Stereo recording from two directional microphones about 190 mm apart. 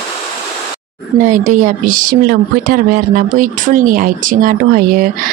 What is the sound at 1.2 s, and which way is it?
Speech, 40° right (ahead or behind).